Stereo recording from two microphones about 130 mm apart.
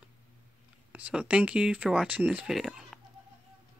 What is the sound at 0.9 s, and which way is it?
Speech, 10° right (ahead or behind).